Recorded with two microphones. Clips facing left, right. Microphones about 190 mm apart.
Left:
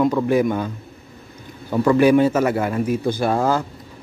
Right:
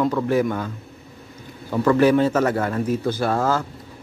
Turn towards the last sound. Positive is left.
turn(degrees=15)  # may be behind; listen again after turning